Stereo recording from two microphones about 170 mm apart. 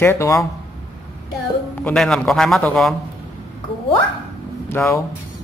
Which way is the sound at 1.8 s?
5° left (ahead or behind).